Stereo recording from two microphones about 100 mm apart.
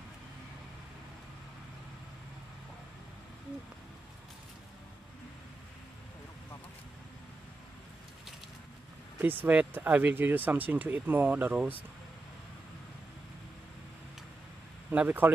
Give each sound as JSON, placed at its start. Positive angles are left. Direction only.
{"t": 9.2, "sound": "speech", "side_deg": -20}
{"t": 14.9, "sound": "speech", "side_deg": -20}